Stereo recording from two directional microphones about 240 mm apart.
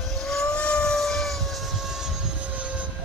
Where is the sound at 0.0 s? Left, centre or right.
Centre.